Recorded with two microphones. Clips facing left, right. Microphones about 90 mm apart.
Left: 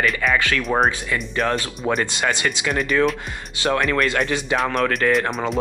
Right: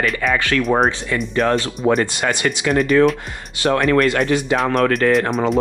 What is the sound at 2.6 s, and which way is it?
Speech, 40° right (ahead or behind).